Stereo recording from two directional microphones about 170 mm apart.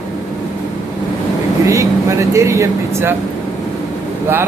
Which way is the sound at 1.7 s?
15° right (ahead or behind).